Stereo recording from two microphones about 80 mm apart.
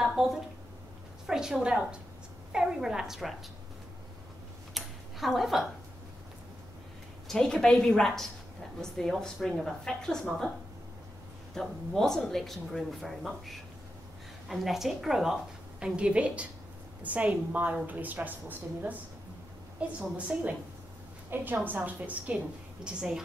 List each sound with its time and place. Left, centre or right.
0.0 s a sound: centre
1.2 s a woman's voice: centre
4.7 s a sound: centre
7.2 s a woman's voice: centre
11.6 s a woman's voice: centre; by 18.9 s right
20.0 s a woman's voice: centre
22.8 s a woman's voice: centre